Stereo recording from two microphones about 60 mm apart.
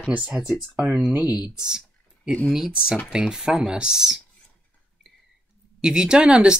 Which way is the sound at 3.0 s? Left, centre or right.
Centre.